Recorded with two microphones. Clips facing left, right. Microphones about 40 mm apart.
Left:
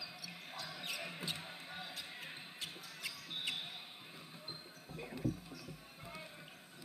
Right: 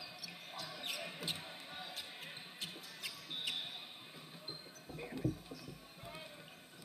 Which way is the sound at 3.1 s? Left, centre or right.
Left.